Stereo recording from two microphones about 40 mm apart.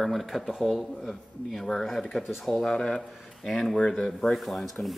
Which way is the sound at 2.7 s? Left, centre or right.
Centre.